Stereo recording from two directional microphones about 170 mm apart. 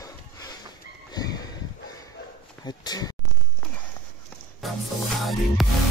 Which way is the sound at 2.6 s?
25° left (ahead or behind).